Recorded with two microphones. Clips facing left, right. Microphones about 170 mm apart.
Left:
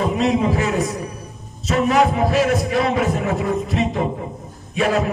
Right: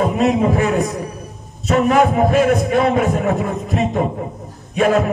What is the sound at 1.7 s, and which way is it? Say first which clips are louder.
A man's voice: right 3 dB; 50° right (ahead or behind).